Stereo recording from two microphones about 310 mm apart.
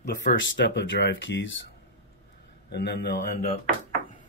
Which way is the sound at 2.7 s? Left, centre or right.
Left.